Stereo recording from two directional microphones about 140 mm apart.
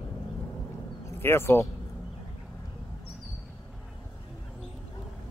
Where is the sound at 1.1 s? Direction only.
15° left (ahead or behind).